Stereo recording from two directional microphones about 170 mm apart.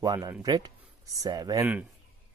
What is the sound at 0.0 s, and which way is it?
Speech, 20° right (ahead or behind).